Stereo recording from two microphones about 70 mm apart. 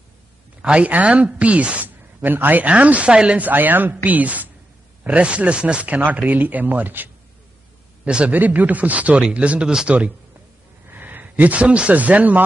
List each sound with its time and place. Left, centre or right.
0.6 s a woman's voice: centre
10.9 s speech: right